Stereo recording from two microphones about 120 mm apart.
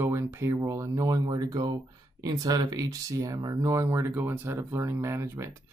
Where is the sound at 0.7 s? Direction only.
25° right (ahead or behind).